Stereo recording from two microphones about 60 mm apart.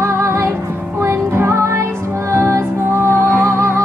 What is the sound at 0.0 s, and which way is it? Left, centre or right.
Music, right.